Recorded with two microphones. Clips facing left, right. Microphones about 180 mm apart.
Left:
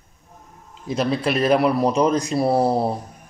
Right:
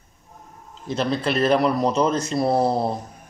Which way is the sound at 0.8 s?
5° left (ahead or behind).